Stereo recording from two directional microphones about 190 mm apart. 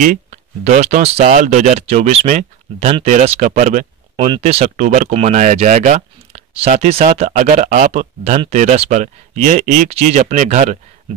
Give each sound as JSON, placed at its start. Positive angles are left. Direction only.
{"t": 0.0, "sound": "speech", "side_deg": -40}